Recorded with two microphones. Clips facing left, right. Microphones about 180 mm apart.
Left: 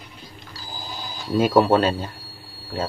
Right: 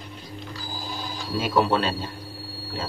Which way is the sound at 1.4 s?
45° left (ahead or behind).